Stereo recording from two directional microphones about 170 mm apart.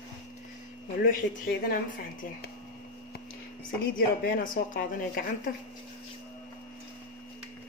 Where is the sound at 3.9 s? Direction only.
55° left (ahead or behind).